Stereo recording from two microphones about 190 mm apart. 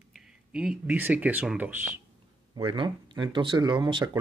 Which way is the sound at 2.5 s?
25° right (ahead or behind).